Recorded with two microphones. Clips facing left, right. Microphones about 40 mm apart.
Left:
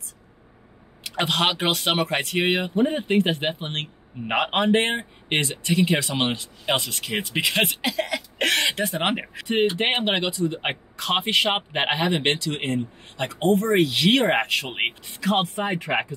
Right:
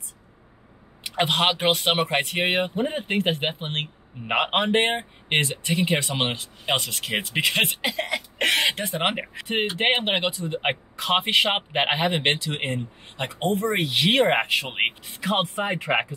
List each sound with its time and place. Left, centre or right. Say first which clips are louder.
1.0 s speech: right 1 dB; centre
11.2 s speech: left 2 dB; right
11.7 s speech: even; centre
13.4 s speech: left 5 dB; centre
15.1 s speech: left 2 dB; right